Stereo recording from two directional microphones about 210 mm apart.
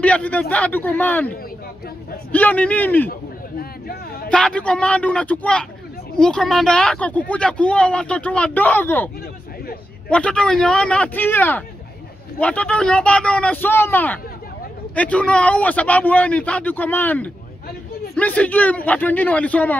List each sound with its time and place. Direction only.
0.0 s a man's voice: 5° left (ahead or behind)
2.3 s a man's voice: 5° left (ahead or behind)
3.1 s a sound: 45° left (ahead or behind)
4.3 s a man's voice: 5° left (ahead or behind)